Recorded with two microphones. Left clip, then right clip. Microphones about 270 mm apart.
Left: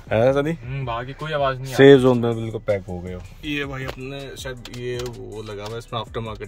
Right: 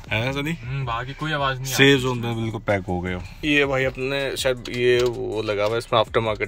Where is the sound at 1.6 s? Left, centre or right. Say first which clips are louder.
Left 6 dB; left.